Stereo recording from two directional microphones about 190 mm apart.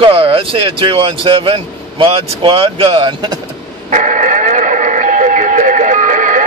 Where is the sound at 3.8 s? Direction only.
40° right (ahead or behind).